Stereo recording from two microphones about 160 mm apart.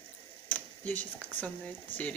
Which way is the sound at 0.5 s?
10° left (ahead or behind).